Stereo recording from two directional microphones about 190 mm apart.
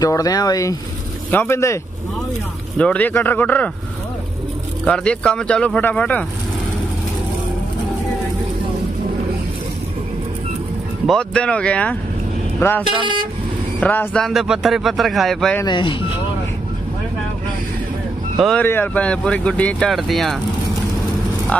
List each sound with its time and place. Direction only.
0.0 s speech: 20° left (ahead or behind)
2.8 s speech: 5° left (ahead or behind)
4.8 s speech: 5° left (ahead or behind)
11.1 s speech: 5° left (ahead or behind)
15.6 s speech: 25° left (ahead or behind)
18.4 s speech: 5° left (ahead or behind)